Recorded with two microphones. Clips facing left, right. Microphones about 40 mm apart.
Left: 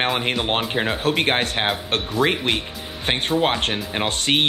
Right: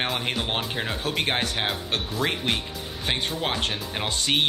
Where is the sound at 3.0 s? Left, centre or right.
Left.